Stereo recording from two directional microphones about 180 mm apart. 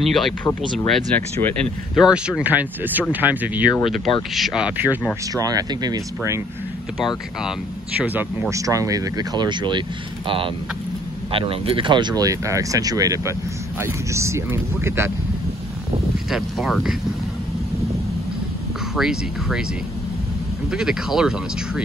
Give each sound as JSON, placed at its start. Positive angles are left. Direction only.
{"t": 0.0, "sound": "speech", "side_deg": 0}
{"t": 5.3, "sound": "speech", "side_deg": -20}
{"t": 8.0, "sound": "speech", "side_deg": -10}
{"t": 16.3, "sound": "speech", "side_deg": 0}
{"t": 18.9, "sound": "speech", "side_deg": -5}
{"t": 20.7, "sound": "speech", "side_deg": -5}